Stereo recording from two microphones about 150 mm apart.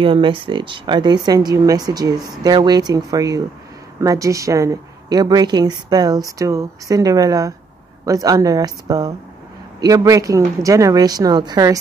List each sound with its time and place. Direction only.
0.0 s speech: 35° right (ahead or behind)